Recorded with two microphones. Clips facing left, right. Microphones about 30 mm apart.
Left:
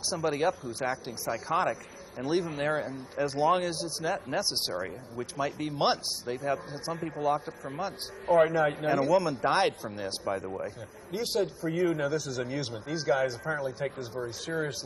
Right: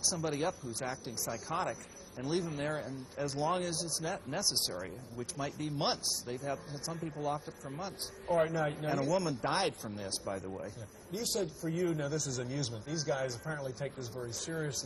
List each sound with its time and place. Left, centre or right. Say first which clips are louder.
0.0 s speech: left 6 dB; left
5.2 s a man's voice: left 7 dB; left
5.7 s a man's voice: left 6 dB; left
11.8 s a man's voice: left 6 dB; left
12.1 s speech: left 6 dB; left